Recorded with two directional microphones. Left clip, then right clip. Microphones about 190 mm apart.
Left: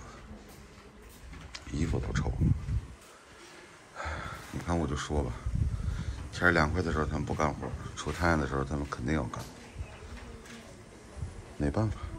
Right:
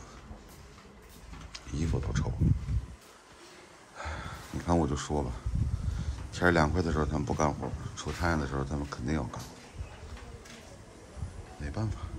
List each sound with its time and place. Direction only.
1.5 s speech: 15° right (ahead or behind)
3.9 s a sound: 15° right (ahead or behind)
5.9 s speech: 20° right (ahead or behind)
11.6 s speech: centre (ahead or behind)